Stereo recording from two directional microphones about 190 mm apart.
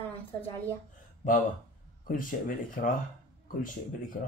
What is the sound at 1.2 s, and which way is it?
Speech, 45° left (ahead or behind).